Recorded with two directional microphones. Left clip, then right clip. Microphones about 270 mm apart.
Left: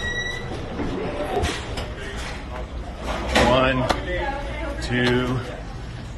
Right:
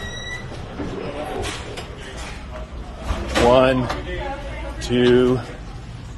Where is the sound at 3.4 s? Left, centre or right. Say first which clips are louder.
Right 8 dB; right.